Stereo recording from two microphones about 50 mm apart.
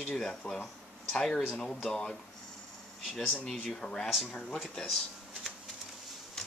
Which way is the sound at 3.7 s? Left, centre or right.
Centre.